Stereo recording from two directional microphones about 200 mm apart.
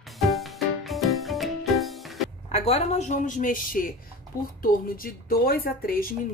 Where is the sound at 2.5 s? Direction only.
30° left (ahead or behind).